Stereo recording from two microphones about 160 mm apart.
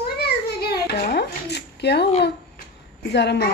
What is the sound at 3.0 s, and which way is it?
Speech, 90° left.